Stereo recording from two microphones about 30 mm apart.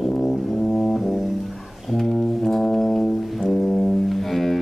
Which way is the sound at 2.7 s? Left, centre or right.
Centre.